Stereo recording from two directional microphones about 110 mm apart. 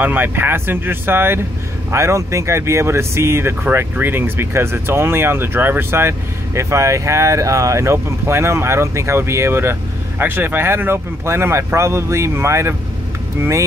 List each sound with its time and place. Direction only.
0.0 s speech: 20° right (ahead or behind)